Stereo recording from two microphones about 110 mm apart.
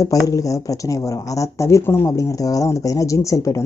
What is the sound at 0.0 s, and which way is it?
A woman's voice, 30° left (ahead or behind).